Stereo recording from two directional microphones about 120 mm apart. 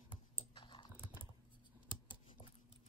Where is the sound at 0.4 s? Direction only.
45° left (ahead or behind).